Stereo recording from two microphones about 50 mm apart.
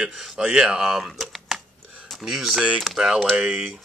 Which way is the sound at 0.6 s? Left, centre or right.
Centre.